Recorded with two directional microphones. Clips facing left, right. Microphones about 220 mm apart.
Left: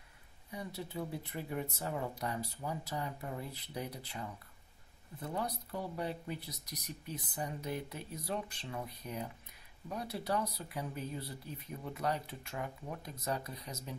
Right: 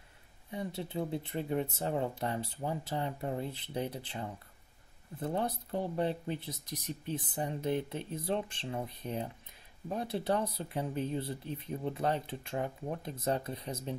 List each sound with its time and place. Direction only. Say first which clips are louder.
0.5 s speech: right 5 dB; 25° right (ahead or behind)
5.3 s speech: right 4 dB; 25° right (ahead or behind)